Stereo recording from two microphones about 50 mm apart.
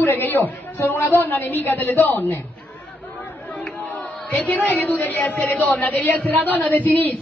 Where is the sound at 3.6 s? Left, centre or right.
Left.